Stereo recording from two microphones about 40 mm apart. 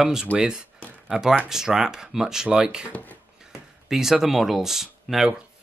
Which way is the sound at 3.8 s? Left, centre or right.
Centre.